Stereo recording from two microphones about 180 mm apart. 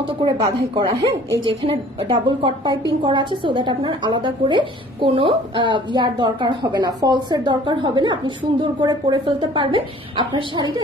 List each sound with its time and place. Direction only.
0.2 s a woman's voice: 25° right (ahead or behind)